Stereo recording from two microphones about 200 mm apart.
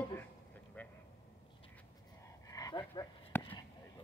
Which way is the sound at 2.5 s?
20° left (ahead or behind).